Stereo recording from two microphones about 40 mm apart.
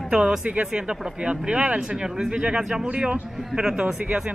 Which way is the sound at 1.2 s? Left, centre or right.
Right.